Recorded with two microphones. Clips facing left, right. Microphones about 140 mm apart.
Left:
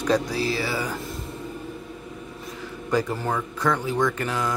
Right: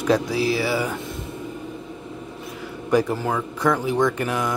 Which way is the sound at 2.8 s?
10° right (ahead or behind).